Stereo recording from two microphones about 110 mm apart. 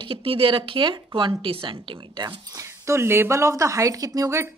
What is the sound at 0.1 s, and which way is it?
Speech, 55° right (ahead or behind).